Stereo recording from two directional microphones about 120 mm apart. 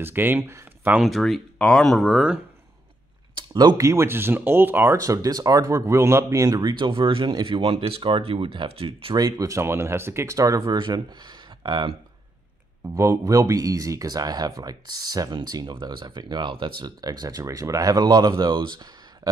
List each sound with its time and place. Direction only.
0.0 s speech: 15° right (ahead or behind)
1.0 s speech: centre (ahead or behind)
3.3 s a sound: 35° right (ahead or behind)
3.7 s speech: 25° right (ahead or behind)
4.9 s speech: 30° right (ahead or behind); by 9.1 s 50° right (ahead or behind)
9.1 s speech: 30° right (ahead or behind)
10.6 s speech: 40° right (ahead or behind)
12.9 s speech: 25° right (ahead or behind); by 18.9 s 40° right (ahead or behind)